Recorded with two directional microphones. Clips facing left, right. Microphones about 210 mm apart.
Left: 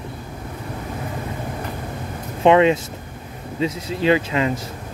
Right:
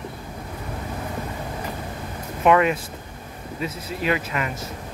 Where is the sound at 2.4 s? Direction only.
25° left (ahead or behind).